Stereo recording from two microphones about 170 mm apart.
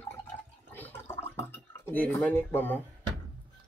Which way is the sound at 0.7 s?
10° left (ahead or behind).